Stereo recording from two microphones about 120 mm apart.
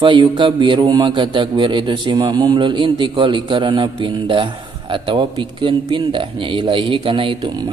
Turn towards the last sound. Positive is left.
turn(degrees=-40)  # may be behind; listen again after turning